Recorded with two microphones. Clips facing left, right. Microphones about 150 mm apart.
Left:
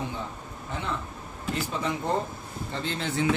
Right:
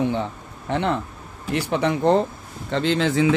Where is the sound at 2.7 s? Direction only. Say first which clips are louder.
Right 11 dB; 90° right.